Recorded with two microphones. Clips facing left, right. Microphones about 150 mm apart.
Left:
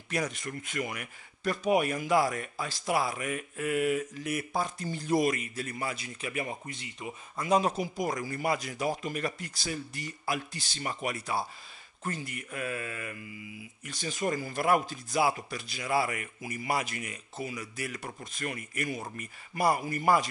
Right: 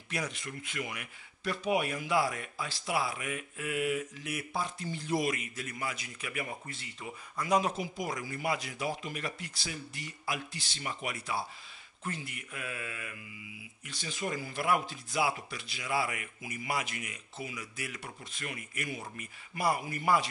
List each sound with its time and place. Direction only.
0.1 s speech: 45° left (ahead or behind); by 7.6 s 25° left (ahead or behind)
7.6 s speech: 40° left (ahead or behind)